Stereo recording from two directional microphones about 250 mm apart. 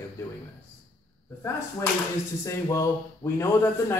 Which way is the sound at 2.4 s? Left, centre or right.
Centre.